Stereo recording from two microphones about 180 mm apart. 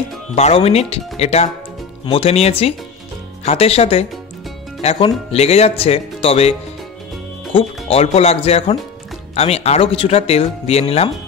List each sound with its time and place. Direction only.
0.4 s speech: 35° left (ahead or behind)
5.3 s speech: 35° left (ahead or behind)
7.5 s speech: 35° left (ahead or behind)